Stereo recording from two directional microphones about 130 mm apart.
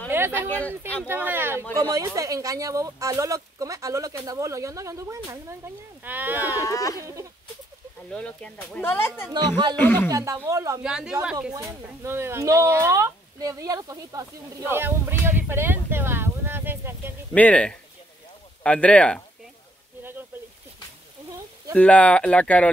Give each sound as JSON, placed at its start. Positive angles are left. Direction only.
{"t": 0.1, "sound": "a sound", "side_deg": -20}
{"t": 0.5, "sound": "speech", "side_deg": 15}
{"t": 1.0, "sound": "speech", "side_deg": -15}
{"t": 1.8, "sound": "speech", "side_deg": -30}
{"t": 6.6, "sound": "a child's voice", "side_deg": 25}
{"t": 7.0, "sound": "speech", "side_deg": -25}
{"t": 8.1, "sound": "speech", "side_deg": 10}
{"t": 10.1, "sound": "speech", "side_deg": -25}
{"t": 10.8, "sound": "speech", "side_deg": -5}
{"t": 11.7, "sound": "speech", "side_deg": -20}
{"t": 17.3, "sound": "speech", "side_deg": 10}
{"t": 20.0, "sound": "a sound", "side_deg": -15}
{"t": 21.7, "sound": "speech", "side_deg": 10}